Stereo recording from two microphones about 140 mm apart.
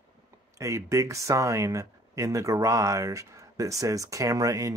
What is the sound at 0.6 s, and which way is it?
Speech, 20° right (ahead or behind).